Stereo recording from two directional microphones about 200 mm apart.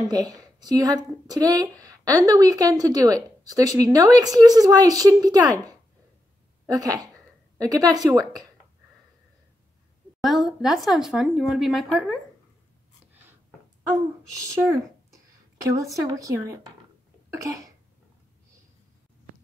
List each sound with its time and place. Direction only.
0.1 s a woman's voice: 20° right (ahead or behind)
10.6 s speech: centre (ahead or behind)
14.6 s a woman's voice: 15° right (ahead or behind)
17.3 s cough: 15° right (ahead or behind)